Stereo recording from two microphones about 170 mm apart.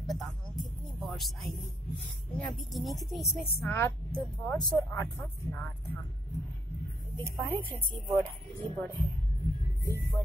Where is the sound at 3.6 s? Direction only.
15° left (ahead or behind).